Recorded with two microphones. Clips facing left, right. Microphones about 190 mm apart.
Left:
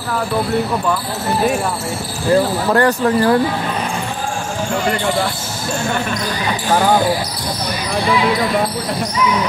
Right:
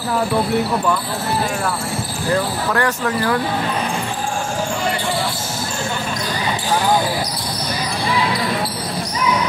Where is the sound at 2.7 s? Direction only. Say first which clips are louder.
Left 7 dB; 35° left (ahead or behind).